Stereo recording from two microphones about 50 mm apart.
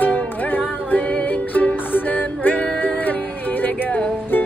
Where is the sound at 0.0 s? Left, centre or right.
Left.